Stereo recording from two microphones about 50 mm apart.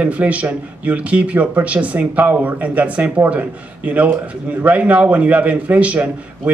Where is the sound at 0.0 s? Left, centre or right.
Right.